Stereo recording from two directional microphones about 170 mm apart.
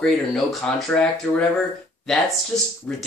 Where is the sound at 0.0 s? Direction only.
Centre (ahead or behind).